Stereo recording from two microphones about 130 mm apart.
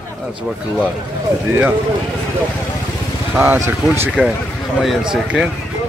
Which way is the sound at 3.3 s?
15° right (ahead or behind).